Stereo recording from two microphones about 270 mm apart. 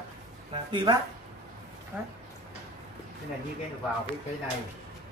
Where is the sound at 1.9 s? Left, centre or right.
Centre.